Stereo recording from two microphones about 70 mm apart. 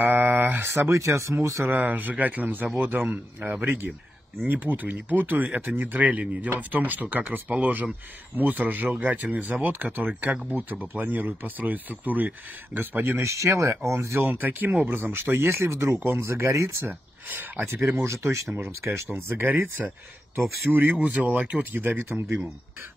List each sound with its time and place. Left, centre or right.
0.0 s a sound: right
0.7 s speech: right
1.7 s speech: right
13.2 s speech: right
14.3 s speech: right
16.8 s speech: right
20.7 s speech: right